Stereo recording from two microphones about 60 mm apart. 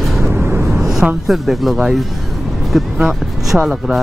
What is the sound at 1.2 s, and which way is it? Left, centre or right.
Speech, centre.